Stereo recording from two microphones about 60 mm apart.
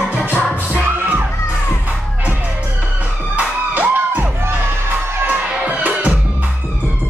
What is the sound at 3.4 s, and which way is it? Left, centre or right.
Music, right.